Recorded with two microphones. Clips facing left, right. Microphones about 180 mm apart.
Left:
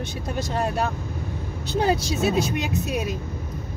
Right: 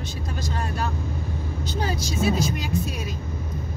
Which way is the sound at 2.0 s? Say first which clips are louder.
Left 1 dB; 60° left (ahead or behind).